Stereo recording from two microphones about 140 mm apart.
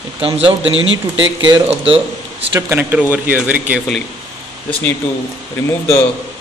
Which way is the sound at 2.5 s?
20° right (ahead or behind).